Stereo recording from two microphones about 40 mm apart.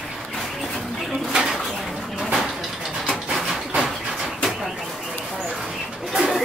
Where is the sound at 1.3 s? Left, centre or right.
Centre.